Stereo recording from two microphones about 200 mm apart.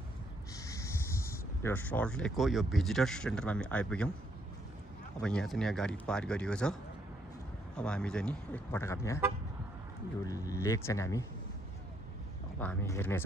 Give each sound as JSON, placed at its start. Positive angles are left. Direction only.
{"t": 0.7, "sound": "a sound", "side_deg": 15}
{"t": 1.6, "sound": "speech", "side_deg": 10}
{"t": 5.2, "sound": "speech", "side_deg": 5}
{"t": 10.2, "sound": "speech", "side_deg": 15}
{"t": 12.5, "sound": "speech", "side_deg": 10}